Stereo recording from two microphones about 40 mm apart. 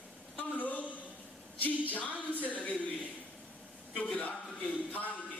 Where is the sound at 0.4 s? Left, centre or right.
Left.